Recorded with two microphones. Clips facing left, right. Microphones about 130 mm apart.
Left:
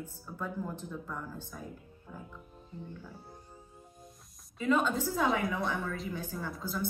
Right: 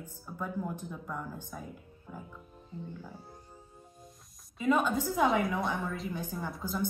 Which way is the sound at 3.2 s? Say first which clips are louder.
Even; 15° left (ahead or behind).